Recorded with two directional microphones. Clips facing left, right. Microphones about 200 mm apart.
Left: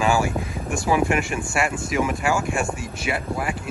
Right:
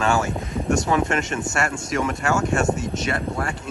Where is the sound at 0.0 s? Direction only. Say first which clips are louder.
Left 1 dB; 5° left (ahead or behind).